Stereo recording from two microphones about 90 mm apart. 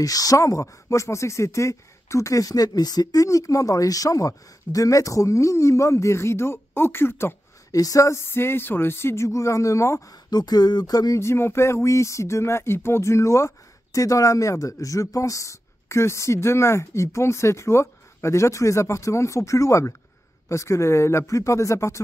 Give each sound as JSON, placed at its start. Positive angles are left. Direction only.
{"t": 0.0, "sound": "speech", "side_deg": 40}
{"t": 7.7, "sound": "speech", "side_deg": 40}
{"t": 8.3, "sound": "speech", "side_deg": 25}
{"t": 10.3, "sound": "speech", "side_deg": 50}
{"t": 11.1, "sound": "speech", "side_deg": 30}